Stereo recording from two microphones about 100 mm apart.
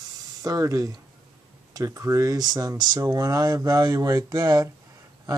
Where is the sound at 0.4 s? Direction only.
35° right (ahead or behind).